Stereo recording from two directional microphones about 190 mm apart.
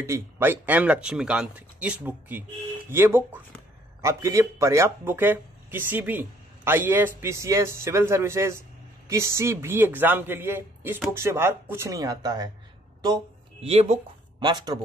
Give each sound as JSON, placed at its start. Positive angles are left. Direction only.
{"t": 0.0, "sound": "speech", "side_deg": -15}
{"t": 13.6, "sound": "speech", "side_deg": -35}
{"t": 14.4, "sound": "speech", "side_deg": -20}